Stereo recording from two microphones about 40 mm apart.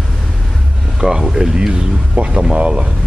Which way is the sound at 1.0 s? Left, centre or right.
Centre.